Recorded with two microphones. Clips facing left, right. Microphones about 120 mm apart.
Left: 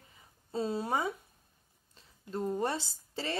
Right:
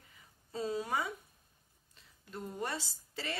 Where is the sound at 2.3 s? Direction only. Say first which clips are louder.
Left 7 dB; 30° left (ahead or behind).